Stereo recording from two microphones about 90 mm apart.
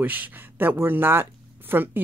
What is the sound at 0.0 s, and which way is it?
Speech, 20° right (ahead or behind).